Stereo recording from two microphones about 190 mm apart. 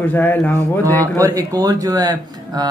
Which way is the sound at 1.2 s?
20° right (ahead or behind).